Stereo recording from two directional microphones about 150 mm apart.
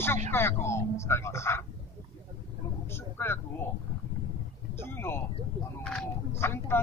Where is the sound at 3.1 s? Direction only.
15° left (ahead or behind).